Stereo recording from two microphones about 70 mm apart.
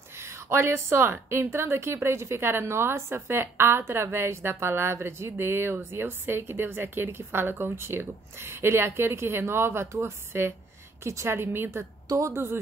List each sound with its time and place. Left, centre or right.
0.2 s a woman's voice: right